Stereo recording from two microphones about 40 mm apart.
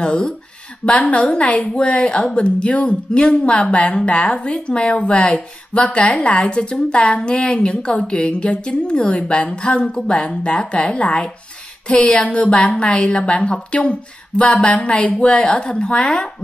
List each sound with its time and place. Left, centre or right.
0.0 s a woman's voice: left
0.9 s a woman's voice: left